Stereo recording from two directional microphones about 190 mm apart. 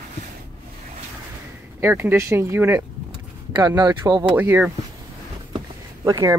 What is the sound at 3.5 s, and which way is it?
Speech, 20° right (ahead or behind).